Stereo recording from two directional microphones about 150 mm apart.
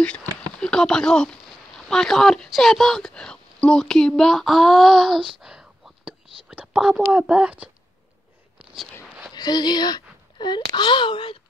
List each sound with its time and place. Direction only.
0.0 s a sound: 5° left (ahead or behind)
0.6 s speech: 5° left (ahead or behind)
5.4 s whispering: 5° right (ahead or behind)
7.1 s speech: 5° right (ahead or behind)
9.3 s a sound: 30° left (ahead or behind)
10.8 s speech: 30° left (ahead or behind)